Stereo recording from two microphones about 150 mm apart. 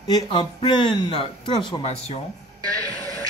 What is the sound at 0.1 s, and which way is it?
Speech, 30° left (ahead or behind).